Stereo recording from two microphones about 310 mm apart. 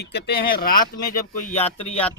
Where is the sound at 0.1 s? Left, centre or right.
Left.